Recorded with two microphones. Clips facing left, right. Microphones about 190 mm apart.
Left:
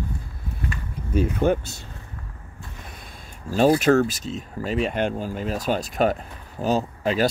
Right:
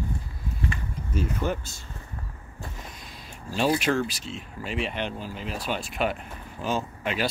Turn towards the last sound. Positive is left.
turn(degrees=35)  # may be behind; listen again after turning